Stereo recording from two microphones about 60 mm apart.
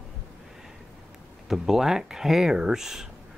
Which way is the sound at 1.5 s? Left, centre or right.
Centre.